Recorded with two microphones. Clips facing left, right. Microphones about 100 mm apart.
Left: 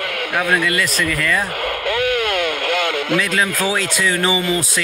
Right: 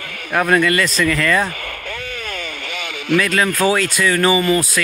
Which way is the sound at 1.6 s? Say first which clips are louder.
Left 10 dB; 70° left (ahead or behind).